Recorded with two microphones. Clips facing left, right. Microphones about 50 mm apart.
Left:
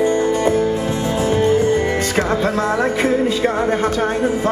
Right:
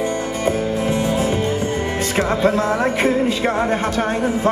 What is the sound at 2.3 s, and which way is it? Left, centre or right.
Music, right.